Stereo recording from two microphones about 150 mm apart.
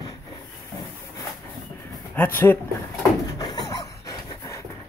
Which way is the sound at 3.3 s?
25° left (ahead or behind).